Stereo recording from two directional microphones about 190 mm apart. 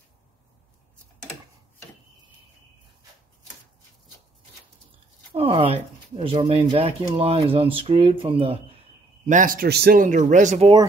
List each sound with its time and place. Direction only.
5.3 s speech: 30° right (ahead or behind)
9.2 s a man's voice: 45° right (ahead or behind)